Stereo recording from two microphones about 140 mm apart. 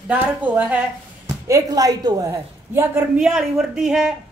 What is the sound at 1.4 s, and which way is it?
Speech, 25° right (ahead or behind).